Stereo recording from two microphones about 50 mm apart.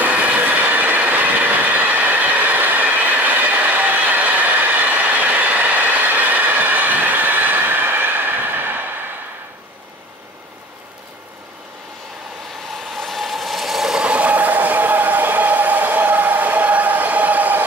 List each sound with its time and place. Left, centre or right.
0.0 s train: right
12.9 s train: centre
13.9 s vehicle: right
14.3 s a sound: right